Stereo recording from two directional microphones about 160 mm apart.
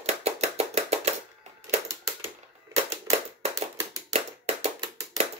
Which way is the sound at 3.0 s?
40° right (ahead or behind).